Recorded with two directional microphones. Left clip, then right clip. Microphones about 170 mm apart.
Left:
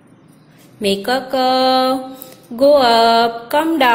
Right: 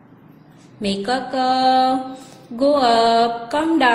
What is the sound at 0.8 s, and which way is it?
A woman's voice, 35° left (ahead or behind).